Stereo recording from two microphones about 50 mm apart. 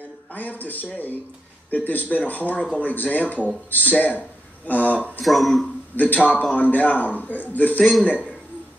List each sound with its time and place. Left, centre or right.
0.3 s speech: left
5.2 s speech: centre
5.9 s speech: left